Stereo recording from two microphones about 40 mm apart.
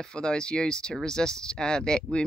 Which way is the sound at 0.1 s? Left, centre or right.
Left.